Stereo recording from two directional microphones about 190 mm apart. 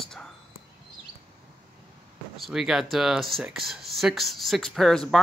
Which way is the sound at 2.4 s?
Centre (ahead or behind).